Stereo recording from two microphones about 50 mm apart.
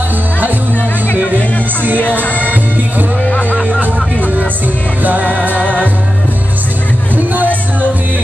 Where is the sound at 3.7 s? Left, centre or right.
Right.